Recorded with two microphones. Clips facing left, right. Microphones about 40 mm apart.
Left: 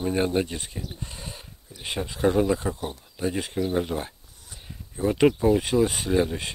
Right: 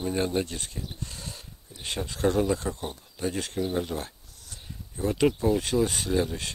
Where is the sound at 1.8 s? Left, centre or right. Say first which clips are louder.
Left 3 dB; centre.